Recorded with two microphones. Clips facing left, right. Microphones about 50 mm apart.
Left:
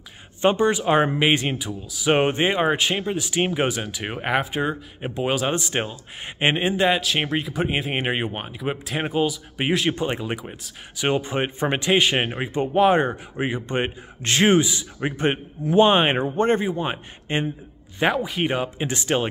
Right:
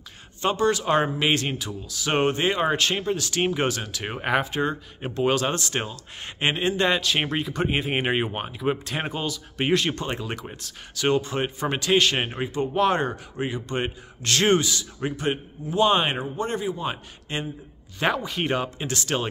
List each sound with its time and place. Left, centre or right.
0.4 s speech: left
6.8 s speech: centre
11.0 s speech: centre
16.3 s a man's voice: left
18.0 s speech: centre